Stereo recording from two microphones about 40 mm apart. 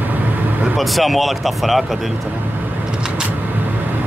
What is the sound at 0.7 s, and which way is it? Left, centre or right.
Speech, centre.